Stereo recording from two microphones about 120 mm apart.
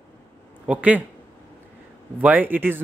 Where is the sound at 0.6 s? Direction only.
10° right (ahead or behind).